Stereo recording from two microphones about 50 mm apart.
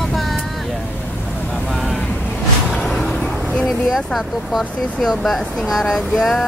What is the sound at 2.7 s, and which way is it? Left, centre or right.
Vehicle, centre.